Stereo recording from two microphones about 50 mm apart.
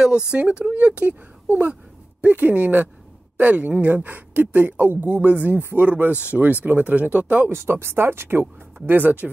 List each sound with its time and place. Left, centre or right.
0.0 s speech: right
5.6 s speech: right
7.5 s speech: right